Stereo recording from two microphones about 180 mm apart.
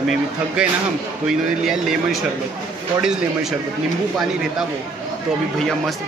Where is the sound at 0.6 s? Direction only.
5° right (ahead or behind).